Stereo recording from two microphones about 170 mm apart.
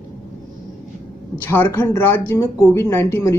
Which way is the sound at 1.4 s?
10° left (ahead or behind).